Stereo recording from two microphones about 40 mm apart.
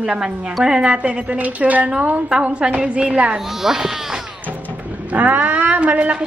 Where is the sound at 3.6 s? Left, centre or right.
Centre.